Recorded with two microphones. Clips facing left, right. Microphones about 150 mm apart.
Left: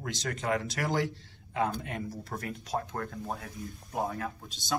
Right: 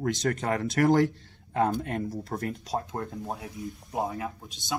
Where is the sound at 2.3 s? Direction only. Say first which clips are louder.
Right 5 dB; 40° right (ahead or behind).